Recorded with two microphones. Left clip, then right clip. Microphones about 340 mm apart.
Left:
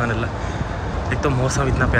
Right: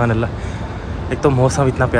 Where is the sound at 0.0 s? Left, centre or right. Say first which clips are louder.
Right 4 dB; centre.